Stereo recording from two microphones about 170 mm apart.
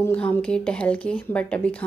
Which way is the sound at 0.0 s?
10° left (ahead or behind).